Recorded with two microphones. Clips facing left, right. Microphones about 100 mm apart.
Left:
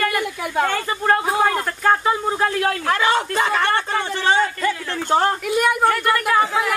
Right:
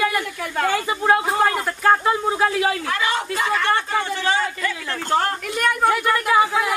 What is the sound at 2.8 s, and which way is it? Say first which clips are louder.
Speech: left 4 dB; 50° left (ahead or behind).